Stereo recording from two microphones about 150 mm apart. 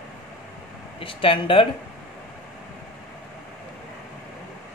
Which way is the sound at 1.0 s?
35° left (ahead or behind).